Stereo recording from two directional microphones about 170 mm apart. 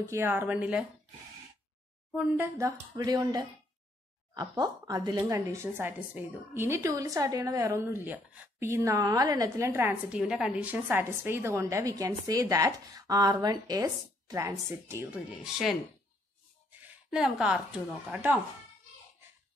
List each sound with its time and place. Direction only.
0.0 s a woman's voice: 15° right (ahead or behind)
2.1 s a woman's voice: 10° right (ahead or behind)
15.4 s a woman's voice: centre (ahead or behind)
17.1 s a woman's voice: 5° right (ahead or behind)